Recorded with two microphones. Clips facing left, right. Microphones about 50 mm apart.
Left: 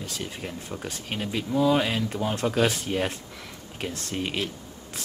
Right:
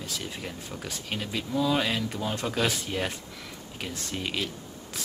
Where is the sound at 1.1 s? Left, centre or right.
Centre.